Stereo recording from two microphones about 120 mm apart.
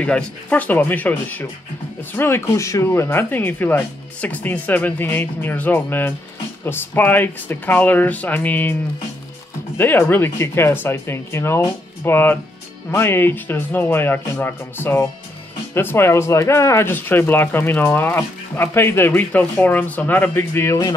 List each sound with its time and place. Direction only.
0.0 s speech: 10° left (ahead or behind)
9.8 s speech: 15° left (ahead or behind)